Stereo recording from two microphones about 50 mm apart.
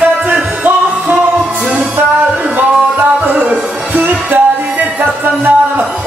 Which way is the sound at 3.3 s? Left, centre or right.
Right.